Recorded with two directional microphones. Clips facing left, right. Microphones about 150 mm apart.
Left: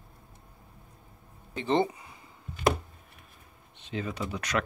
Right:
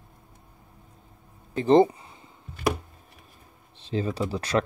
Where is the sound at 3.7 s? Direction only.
30° right (ahead or behind).